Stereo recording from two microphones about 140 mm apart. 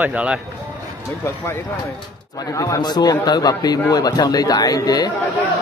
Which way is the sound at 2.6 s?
30° left (ahead or behind).